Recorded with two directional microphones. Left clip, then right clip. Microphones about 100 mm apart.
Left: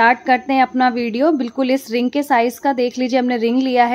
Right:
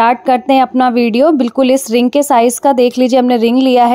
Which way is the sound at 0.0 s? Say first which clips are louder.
Right 3 dB; 90° right.